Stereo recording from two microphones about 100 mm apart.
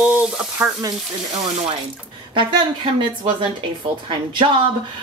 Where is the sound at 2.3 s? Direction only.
55° right (ahead or behind).